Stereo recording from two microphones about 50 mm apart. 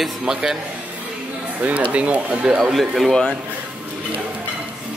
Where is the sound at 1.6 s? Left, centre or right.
Right.